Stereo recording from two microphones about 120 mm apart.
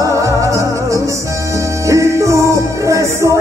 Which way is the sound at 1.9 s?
25° right (ahead or behind).